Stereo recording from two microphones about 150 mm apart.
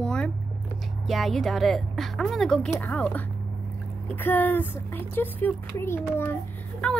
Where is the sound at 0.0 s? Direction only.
5° left (ahead or behind).